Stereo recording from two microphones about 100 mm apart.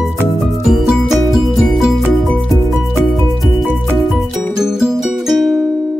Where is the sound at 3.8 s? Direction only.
5° left (ahead or behind).